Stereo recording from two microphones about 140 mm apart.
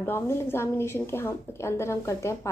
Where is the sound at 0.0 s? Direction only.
15° left (ahead or behind).